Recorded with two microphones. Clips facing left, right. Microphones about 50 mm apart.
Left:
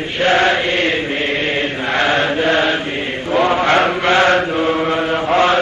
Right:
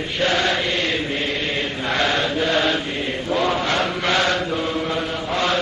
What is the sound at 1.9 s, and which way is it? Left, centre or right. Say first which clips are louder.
Chant: left 5 dB; left.